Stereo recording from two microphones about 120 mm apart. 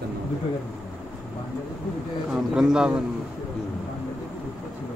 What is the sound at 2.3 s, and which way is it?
Speech, 5° right (ahead or behind).